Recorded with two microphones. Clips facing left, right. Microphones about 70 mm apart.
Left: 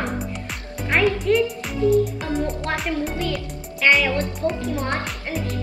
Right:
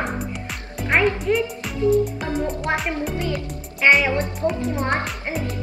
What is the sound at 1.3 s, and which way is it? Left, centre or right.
Speech, centre.